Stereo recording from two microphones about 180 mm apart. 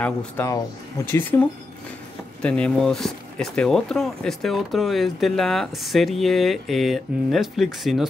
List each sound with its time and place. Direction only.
0.0 s speech: 5° left (ahead or behind)
2.4 s speech: 5° left (ahead or behind)